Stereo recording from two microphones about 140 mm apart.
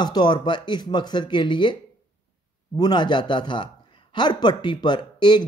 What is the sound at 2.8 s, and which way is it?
A man's voice, 35° left (ahead or behind).